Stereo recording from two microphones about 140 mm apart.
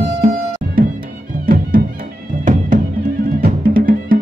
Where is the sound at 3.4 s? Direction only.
85° right.